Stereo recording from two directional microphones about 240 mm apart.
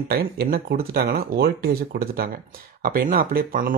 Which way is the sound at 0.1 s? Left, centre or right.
Right.